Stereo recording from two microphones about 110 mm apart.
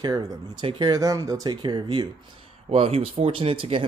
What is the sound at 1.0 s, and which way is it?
Speech, 30° right (ahead or behind).